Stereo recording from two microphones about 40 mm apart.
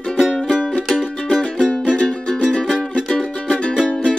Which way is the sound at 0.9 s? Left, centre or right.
Centre.